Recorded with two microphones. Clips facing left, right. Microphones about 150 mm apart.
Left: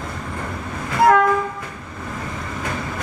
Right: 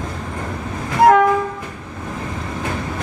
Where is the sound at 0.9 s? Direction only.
20° right (ahead or behind).